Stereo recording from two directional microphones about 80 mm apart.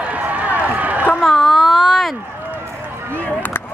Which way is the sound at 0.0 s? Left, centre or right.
Centre.